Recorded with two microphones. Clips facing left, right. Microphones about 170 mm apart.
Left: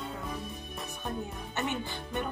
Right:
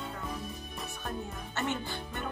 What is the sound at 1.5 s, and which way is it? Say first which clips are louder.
Music: even; 20° left (ahead or behind).